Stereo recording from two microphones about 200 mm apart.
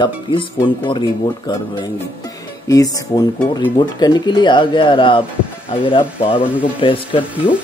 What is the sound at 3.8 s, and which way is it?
Speech, 20° left (ahead or behind).